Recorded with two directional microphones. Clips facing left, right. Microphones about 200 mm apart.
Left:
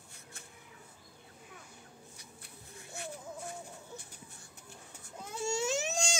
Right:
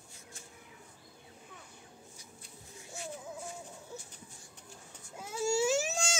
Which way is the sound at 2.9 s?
60° left (ahead or behind).